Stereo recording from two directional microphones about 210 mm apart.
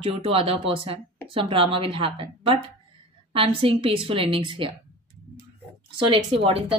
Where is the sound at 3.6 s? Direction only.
25° right (ahead or behind).